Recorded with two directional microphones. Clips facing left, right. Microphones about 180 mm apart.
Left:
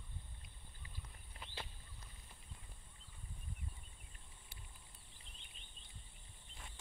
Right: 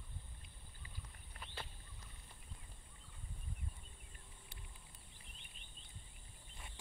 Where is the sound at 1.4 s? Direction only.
15° left (ahead or behind).